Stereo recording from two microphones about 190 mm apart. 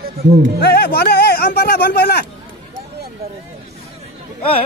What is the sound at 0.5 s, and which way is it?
Speech, 55° left (ahead or behind).